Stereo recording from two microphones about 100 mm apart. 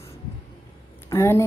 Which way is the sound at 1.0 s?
30° left (ahead or behind).